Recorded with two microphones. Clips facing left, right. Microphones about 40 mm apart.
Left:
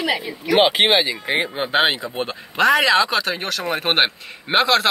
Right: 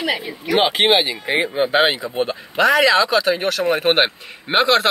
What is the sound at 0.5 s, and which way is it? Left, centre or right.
Speech, centre.